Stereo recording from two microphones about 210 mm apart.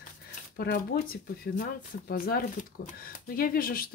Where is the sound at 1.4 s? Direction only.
45° left (ahead or behind).